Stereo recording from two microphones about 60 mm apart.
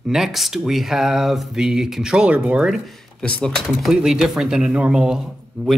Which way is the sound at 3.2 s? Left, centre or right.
Centre.